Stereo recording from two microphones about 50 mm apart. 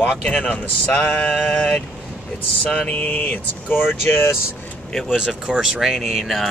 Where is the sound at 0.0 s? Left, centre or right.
Left.